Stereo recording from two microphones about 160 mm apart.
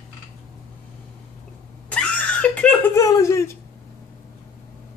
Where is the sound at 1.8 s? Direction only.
10° left (ahead or behind).